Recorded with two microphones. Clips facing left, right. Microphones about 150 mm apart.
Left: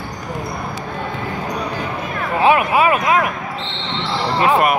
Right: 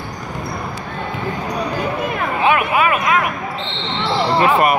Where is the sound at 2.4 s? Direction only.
30° left (ahead or behind).